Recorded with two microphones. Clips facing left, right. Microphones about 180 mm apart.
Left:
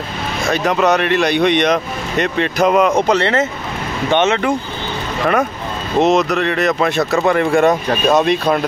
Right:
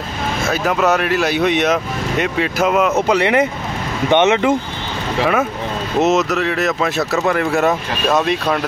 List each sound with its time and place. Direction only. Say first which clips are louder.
0.5 s speech: left 2 dB; 5° right (ahead or behind)
5.2 s speech: left 1 dB; 5° right (ahead or behind)